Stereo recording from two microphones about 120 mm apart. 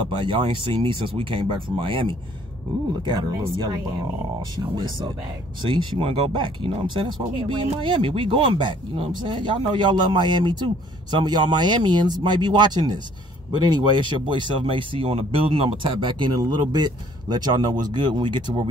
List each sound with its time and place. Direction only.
0.2 s speech: 45° right (ahead or behind)